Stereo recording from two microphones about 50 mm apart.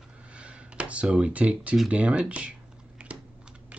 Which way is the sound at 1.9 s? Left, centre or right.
Right.